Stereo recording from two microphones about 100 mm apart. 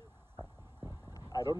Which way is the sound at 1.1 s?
40° left (ahead or behind).